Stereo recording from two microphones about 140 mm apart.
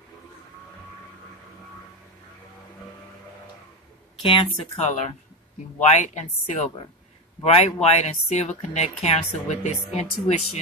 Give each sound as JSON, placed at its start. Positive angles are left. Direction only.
{"t": 4.2, "sound": "speech", "side_deg": 40}
{"t": 4.7, "sound": "a woman's voice", "side_deg": 55}